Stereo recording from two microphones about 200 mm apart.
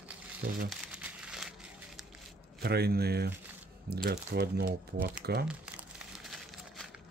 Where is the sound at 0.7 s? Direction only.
5° right (ahead or behind).